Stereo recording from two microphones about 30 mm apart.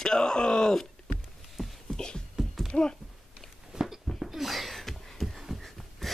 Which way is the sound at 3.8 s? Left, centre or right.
Centre.